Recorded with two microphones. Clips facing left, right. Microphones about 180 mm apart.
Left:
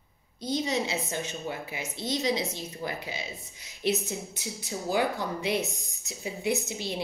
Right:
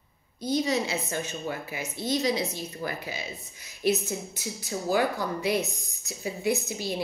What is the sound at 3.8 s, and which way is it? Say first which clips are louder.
Speech: right 3 dB; 45° right (ahead or behind).